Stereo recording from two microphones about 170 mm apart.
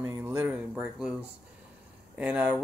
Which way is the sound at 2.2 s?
5° right (ahead or behind).